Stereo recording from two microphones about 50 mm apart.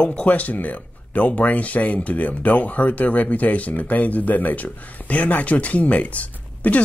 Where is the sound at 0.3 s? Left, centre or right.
Left.